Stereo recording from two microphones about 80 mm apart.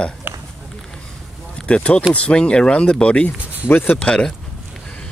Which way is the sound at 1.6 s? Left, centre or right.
Centre.